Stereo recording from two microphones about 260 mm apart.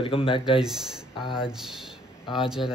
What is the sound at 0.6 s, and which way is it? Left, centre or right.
Speech, centre.